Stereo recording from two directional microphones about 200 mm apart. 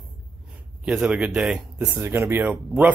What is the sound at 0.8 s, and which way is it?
Speech, 5° right (ahead or behind).